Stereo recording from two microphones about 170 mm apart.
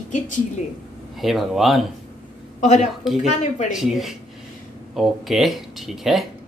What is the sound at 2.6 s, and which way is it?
Speech, 45° left (ahead or behind).